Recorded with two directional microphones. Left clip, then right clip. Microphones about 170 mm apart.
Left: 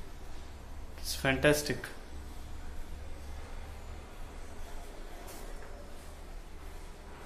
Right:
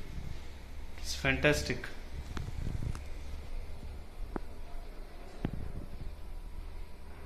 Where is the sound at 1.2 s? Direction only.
25° left (ahead or behind).